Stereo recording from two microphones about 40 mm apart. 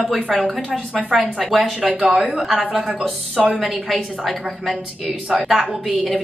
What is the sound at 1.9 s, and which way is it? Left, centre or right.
Speech, right.